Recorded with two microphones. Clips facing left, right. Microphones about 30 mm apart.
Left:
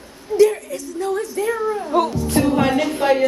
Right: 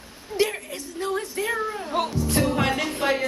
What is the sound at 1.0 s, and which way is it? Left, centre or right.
Speech, right.